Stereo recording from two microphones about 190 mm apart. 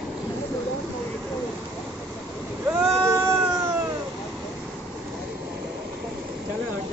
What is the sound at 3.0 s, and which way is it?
Cat, 15° right (ahead or behind).